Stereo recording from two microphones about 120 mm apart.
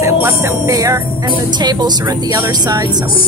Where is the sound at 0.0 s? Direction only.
25° right (ahead or behind).